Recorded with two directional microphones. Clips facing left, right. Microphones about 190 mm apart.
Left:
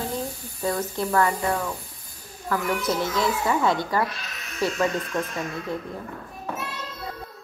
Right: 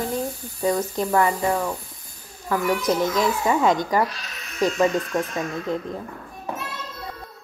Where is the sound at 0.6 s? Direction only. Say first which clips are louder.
Right 3 dB; 15° right (ahead or behind).